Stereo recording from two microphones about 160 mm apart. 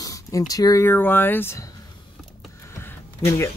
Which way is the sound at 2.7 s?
15° left (ahead or behind).